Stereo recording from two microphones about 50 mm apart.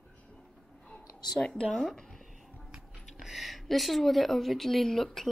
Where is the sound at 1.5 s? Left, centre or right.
Centre.